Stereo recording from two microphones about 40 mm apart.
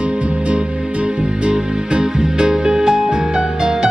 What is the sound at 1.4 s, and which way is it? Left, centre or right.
Music, right.